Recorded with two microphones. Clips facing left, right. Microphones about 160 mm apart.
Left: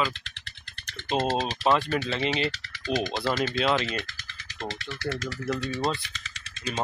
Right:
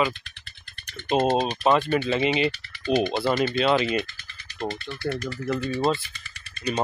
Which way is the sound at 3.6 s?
Centre (ahead or behind).